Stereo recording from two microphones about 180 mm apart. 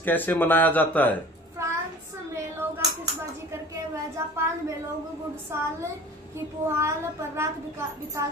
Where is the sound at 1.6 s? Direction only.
15° right (ahead or behind).